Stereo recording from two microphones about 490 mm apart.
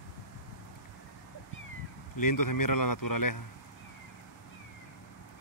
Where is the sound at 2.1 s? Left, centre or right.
Left.